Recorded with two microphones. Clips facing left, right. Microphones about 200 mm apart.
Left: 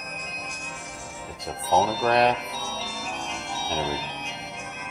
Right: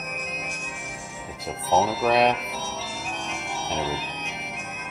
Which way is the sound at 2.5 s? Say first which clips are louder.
Right 1 dB; 65° right (ahead or behind).